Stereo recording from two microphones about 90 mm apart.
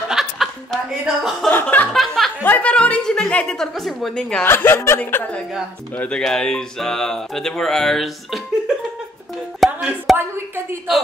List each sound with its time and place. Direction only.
0.1 s chuckle: centre (ahead or behind)
1.5 s speech: 20° left (ahead or behind)
1.9 s speech: centre (ahead or behind)
2.4 s a woman's voice: 15° left (ahead or behind)
4.5 s speech: 25° left (ahead or behind)
5.9 s speech: 10° left (ahead or behind)
9.6 s a sound: centre (ahead or behind)
10.1 s a woman's voice: 25° right (ahead or behind)